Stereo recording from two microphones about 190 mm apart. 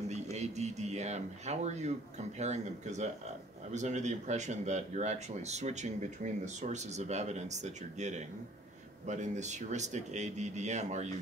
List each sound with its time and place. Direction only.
0.1 s speech: 35° right (ahead or behind)